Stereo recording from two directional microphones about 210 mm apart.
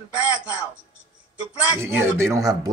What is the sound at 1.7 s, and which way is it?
Speech, 10° right (ahead or behind).